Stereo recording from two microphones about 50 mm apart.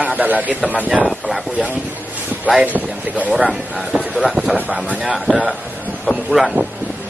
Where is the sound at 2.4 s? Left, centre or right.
Right.